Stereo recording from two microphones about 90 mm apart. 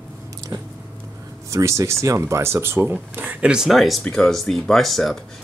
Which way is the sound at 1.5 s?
35° right (ahead or behind).